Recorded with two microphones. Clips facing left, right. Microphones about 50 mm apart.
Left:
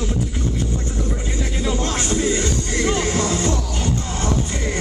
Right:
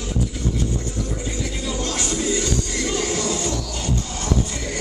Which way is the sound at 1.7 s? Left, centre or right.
Left.